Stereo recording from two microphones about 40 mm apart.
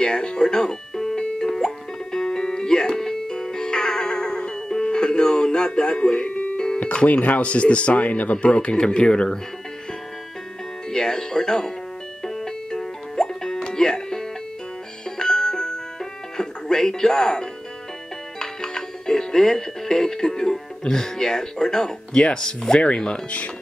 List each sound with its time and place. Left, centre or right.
0.0 s music: centre
7.1 s speech: left
8.5 s speech: left
10.9 s speech: centre
12.2 s music: centre
20.8 s speech: centre